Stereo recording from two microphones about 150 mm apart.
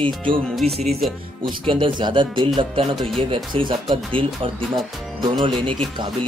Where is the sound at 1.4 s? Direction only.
35° right (ahead or behind).